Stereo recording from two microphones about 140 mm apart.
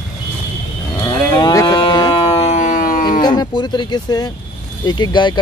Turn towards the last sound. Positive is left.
turn(degrees=35)  # may be behind; listen again after turning